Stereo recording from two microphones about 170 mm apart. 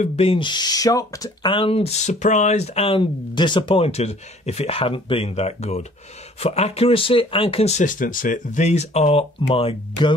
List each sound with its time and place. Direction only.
0.0 s speech: 40° left (ahead or behind)